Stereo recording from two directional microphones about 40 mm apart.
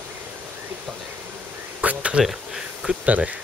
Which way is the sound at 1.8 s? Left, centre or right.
Right.